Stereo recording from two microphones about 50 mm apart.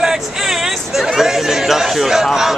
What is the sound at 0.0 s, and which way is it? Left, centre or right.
Chatter, centre.